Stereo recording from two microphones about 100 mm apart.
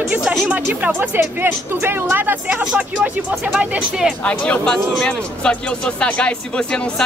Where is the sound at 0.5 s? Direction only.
15° right (ahead or behind).